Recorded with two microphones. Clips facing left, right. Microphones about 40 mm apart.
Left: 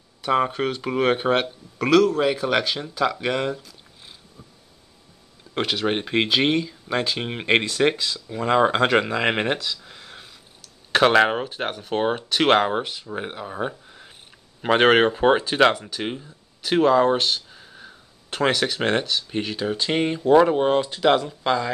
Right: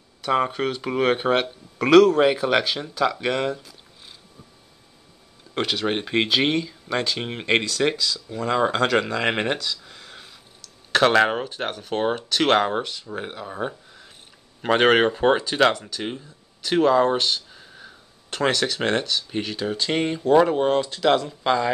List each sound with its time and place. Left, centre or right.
0.2 s speech: centre
1.9 s a man's voice: right
2.2 s speech: centre
5.5 s speech: centre
7.6 s speech: left; by 21.6 s centre